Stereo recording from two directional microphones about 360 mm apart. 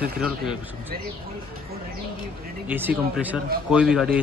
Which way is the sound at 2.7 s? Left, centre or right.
Centre.